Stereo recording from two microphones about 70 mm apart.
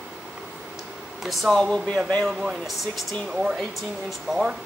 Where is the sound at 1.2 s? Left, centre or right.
Centre.